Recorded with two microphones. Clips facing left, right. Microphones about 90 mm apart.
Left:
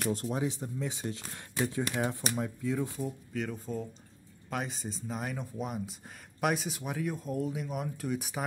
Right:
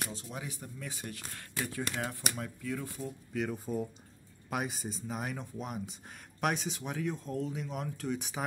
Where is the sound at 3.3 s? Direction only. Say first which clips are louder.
Right 1 dB; 5° right (ahead or behind).